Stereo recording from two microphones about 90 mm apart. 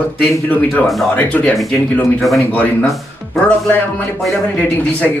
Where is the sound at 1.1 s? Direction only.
15° left (ahead or behind).